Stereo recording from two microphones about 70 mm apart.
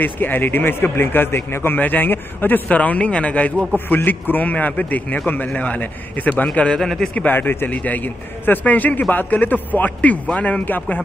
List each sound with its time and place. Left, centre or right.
0.0 s a man's voice: left
6.8 s a man's voice: centre
7.2 s a man's voice: left
10.6 s a man's voice: left